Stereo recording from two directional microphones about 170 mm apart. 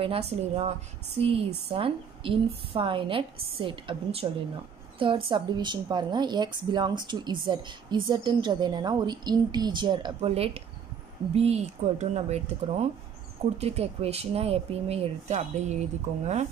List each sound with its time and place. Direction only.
0.0 s a woman's voice: 35° right (ahead or behind)